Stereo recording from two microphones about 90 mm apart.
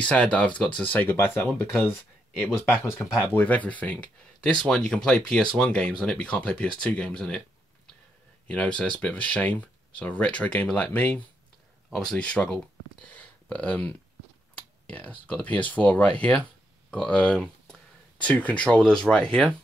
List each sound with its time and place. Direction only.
0.1 s speech: 15° left (ahead or behind)
1.0 s speech: 30° left (ahead or behind)
3.0 s speech: 15° left (ahead or behind)
8.5 s speech: 15° left (ahead or behind)
11.9 s speech: 5° left (ahead or behind)